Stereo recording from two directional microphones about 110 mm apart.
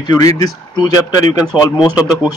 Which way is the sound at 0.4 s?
35° left (ahead or behind).